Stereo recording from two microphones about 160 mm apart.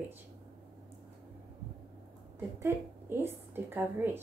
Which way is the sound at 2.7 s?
15° right (ahead or behind).